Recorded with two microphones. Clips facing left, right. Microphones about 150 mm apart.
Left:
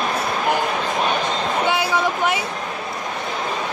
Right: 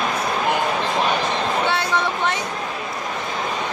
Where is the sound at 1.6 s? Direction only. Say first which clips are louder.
Left 2 dB; 10° left (ahead or behind).